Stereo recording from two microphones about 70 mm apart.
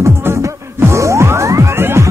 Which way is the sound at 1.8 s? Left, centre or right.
Right.